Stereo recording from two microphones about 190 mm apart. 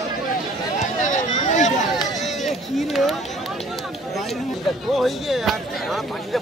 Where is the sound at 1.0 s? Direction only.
40° left (ahead or behind).